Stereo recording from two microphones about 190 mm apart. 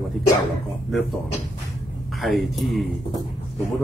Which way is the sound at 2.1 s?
Centre (ahead or behind).